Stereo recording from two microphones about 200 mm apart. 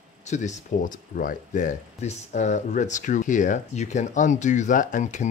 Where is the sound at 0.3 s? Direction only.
35° left (ahead or behind).